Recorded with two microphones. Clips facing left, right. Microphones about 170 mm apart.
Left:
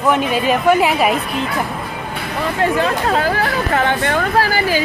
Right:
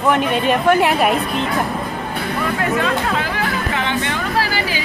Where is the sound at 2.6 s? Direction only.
35° left (ahead or behind).